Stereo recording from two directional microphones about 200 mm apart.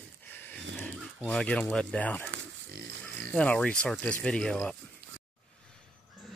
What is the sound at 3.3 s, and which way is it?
Speech, 5° left (ahead or behind).